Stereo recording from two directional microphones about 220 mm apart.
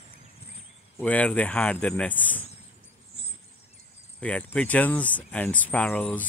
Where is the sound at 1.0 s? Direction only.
5° left (ahead or behind).